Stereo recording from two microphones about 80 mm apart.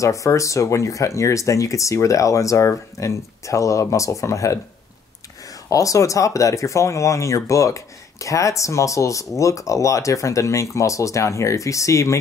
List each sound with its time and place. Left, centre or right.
0.0 s speech: left
5.7 s speech: left